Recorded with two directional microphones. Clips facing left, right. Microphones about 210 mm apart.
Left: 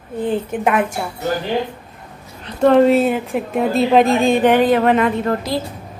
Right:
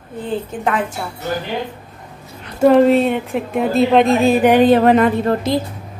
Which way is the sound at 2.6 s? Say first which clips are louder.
Right 1 dB; centre (ahead or behind).